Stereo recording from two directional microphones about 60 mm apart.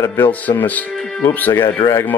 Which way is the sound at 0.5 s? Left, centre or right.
Left.